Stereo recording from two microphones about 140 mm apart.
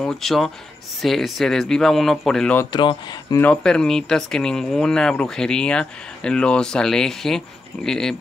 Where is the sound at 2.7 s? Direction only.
30° left (ahead or behind).